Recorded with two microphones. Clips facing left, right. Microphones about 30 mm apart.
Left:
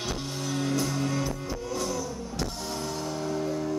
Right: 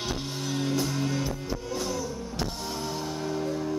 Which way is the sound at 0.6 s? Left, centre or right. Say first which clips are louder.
Even; centre.